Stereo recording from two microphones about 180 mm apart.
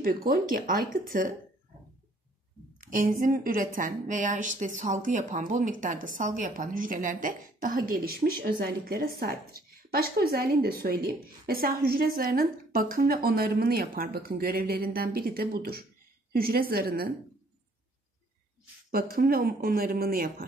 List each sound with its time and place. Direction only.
0.0 s a woman's voice: 55° right (ahead or behind)
2.8 s a woman's voice: 50° right (ahead or behind)
18.9 s a woman's voice: 55° right (ahead or behind)